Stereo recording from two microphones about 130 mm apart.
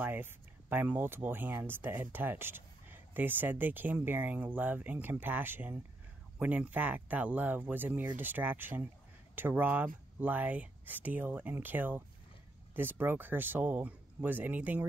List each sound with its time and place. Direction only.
0.0 s speech: 15° right (ahead or behind)